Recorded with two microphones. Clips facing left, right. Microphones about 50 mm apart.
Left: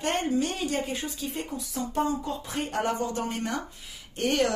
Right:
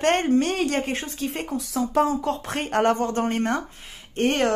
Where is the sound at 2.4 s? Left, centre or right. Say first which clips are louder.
Right 7 dB; right.